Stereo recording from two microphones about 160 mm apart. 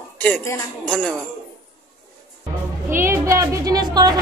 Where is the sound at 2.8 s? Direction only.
15° right (ahead or behind).